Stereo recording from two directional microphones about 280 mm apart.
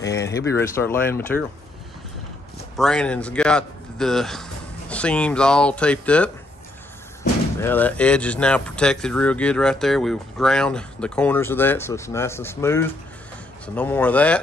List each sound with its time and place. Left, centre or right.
0.0 s speech: centre
2.8 s a man's voice: centre
7.6 s speech: centre